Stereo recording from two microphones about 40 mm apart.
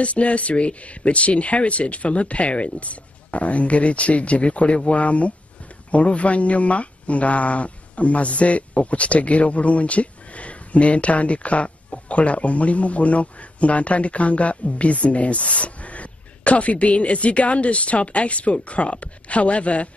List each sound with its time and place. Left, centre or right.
0.0 s speech: left